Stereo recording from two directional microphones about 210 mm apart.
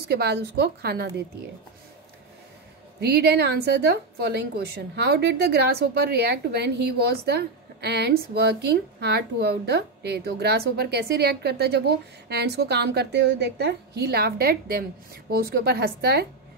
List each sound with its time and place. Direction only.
0.1 s a woman's voice: 50° right (ahead or behind)
3.0 s a woman's voice: 50° right (ahead or behind)